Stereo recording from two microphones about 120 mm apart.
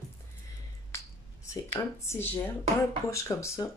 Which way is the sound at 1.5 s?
25° left (ahead or behind).